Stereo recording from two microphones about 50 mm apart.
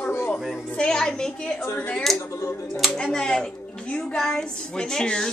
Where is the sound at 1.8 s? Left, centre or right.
Left.